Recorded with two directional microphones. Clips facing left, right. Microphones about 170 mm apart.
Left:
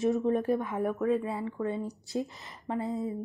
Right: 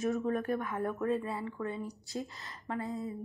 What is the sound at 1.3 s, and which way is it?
Speech, 20° left (ahead or behind).